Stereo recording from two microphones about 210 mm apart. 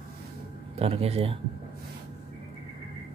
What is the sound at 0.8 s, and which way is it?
Speech, 30° right (ahead or behind).